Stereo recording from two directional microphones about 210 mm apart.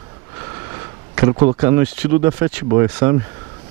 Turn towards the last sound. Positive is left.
turn(degrees=-15)  # may be behind; listen again after turning